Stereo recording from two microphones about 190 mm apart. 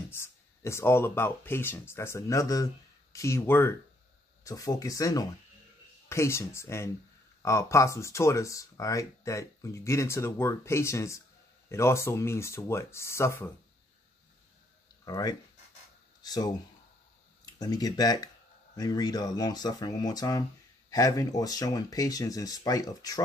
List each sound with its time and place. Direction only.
0.1 s speech: 15° left (ahead or behind)
15.0 s speech: 20° left (ahead or behind)
17.6 s speech: 20° left (ahead or behind)